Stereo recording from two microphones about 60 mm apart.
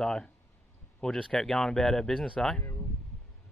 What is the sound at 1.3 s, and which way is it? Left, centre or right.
Speech, centre.